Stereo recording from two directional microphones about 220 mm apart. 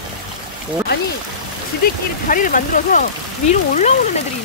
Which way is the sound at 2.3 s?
40° left (ahead or behind).